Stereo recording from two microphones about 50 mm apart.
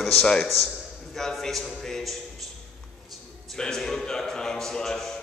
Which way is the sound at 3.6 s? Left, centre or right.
Centre.